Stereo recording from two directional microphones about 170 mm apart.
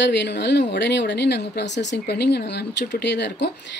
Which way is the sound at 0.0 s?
90° left.